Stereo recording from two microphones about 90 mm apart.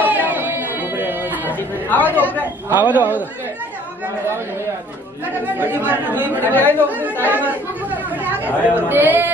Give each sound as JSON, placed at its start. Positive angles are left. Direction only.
{"t": 0.0, "sound": "a sound", "side_deg": -20}
{"t": 1.5, "sound": "chatter", "side_deg": 20}
{"t": 2.7, "sound": "speech", "side_deg": -20}
{"t": 5.6, "sound": "speech", "side_deg": -25}
{"t": 6.4, "sound": "speech", "side_deg": 20}
{"t": 6.9, "sound": "speech", "side_deg": -20}
{"t": 7.2, "sound": "chatter", "side_deg": -20}
{"t": 8.7, "sound": "speech", "side_deg": -20}